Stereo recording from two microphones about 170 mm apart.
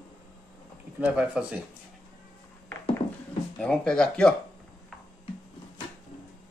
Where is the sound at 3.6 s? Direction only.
5° left (ahead or behind).